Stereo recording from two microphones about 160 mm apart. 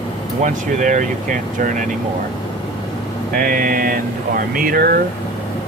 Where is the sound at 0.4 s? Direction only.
50° right (ahead or behind).